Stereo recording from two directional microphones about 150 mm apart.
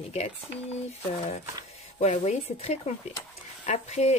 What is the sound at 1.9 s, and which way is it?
Speech, 50° left (ahead or behind).